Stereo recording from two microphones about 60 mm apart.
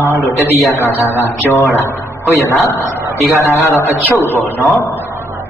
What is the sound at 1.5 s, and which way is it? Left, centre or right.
A man's voice, left.